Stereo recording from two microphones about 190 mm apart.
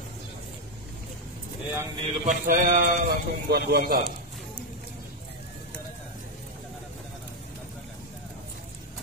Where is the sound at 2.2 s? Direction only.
45° right (ahead or behind).